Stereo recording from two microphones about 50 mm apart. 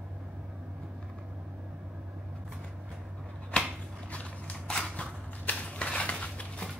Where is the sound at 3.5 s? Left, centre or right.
Centre.